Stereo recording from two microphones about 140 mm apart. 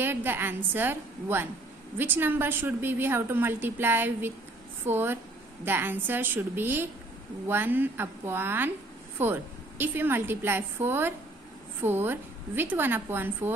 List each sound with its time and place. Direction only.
0.0 s a woman's voice: 15° right (ahead or behind)